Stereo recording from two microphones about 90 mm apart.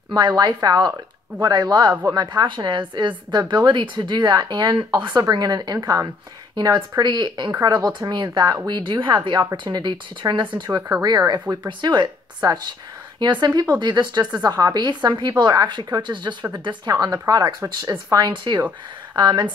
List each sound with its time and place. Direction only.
0.1 s a woman's voice: 55° right (ahead or behind)
4.9 s speech: 35° right (ahead or behind)
5.3 s a woman's voice: 50° right (ahead or behind); by 10.6 s 65° right (ahead or behind)
11.0 s a woman's voice: 45° right (ahead or behind)
18.3 s a woman's voice: 60° right (ahead or behind)